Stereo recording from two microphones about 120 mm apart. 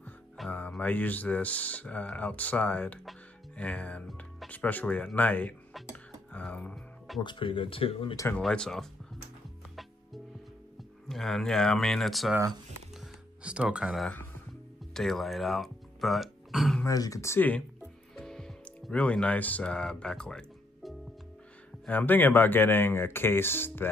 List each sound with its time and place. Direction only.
0.5 s speech: 10° left (ahead or behind)
7.2 s speech: 40° left (ahead or behind)
8.4 s speech: 5° left (ahead or behind)
10.8 s speech: centre (ahead or behind)
13.0 s music: 10° right (ahead or behind)
15.0 s throat clearing: centre (ahead or behind)
16.8 s speech: 30° left (ahead or behind); by 17.6 s 15° left (ahead or behind)
18.1 s music: 5° left (ahead or behind)
21.8 s speech: 15° left (ahead or behind)